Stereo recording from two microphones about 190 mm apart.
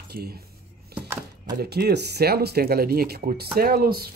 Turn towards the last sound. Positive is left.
turn(degrees=-50)  # may be behind; listen again after turning